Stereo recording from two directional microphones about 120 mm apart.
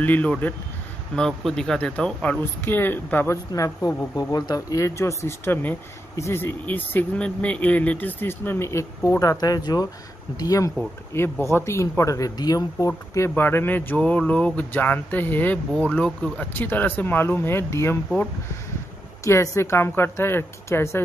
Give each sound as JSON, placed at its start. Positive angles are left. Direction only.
{"t": 0.0, "sound": "speech", "side_deg": 15}
{"t": 3.5, "sound": "speech", "side_deg": 30}
{"t": 19.2, "sound": "speech", "side_deg": 25}